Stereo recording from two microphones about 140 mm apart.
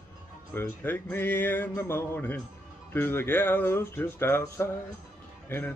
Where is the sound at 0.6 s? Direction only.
15° left (ahead or behind).